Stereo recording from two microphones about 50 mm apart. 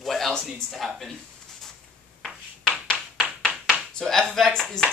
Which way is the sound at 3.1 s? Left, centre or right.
Right.